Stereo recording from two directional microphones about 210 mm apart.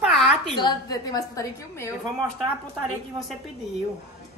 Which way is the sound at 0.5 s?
20° left (ahead or behind).